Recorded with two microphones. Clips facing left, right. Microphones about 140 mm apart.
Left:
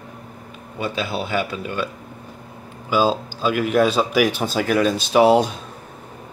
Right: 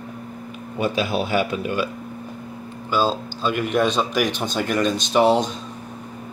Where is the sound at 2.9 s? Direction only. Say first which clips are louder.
Left 3 dB; 10° left (ahead or behind).